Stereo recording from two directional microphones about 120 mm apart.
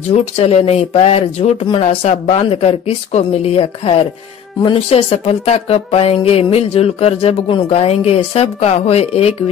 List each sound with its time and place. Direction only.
0.1 s speech: 65° left (ahead or behind); by 2.0 s 50° left (ahead or behind)
2.0 s speech: 60° left (ahead or behind)